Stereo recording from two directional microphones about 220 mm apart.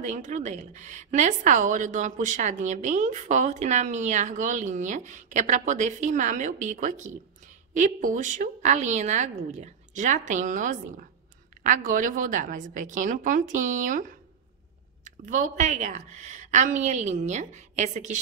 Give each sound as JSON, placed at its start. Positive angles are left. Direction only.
{"t": 0.0, "sound": "a woman's voice", "side_deg": -35}
{"t": 15.0, "sound": "a woman's voice", "side_deg": -35}